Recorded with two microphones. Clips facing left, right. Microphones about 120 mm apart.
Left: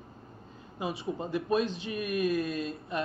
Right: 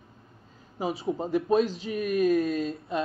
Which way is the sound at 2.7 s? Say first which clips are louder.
Right 4 dB; 25° right (ahead or behind).